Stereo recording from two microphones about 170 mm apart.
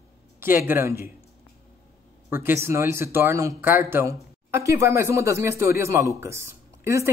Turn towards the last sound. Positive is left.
turn(degrees=-15)  # may be behind; listen again after turning